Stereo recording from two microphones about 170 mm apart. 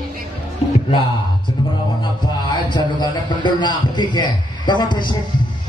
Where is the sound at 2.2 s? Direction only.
25° left (ahead or behind).